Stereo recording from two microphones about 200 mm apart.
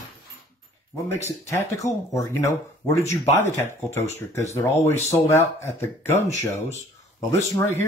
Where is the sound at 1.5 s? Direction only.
15° left (ahead or behind).